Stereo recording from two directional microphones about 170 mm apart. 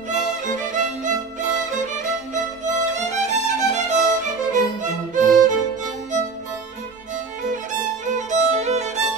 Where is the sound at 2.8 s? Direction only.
45° right (ahead or behind).